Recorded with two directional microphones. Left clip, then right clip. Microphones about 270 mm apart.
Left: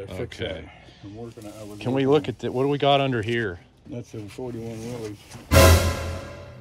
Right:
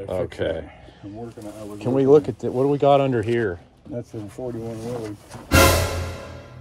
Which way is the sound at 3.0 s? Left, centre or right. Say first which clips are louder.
Right 3 dB; centre.